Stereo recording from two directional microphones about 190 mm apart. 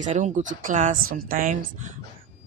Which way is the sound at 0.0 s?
40° right (ahead or behind).